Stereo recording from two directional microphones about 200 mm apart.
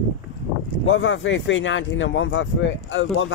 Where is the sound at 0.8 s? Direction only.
70° left (ahead or behind).